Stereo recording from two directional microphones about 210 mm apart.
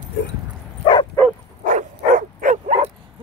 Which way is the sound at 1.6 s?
40° right (ahead or behind).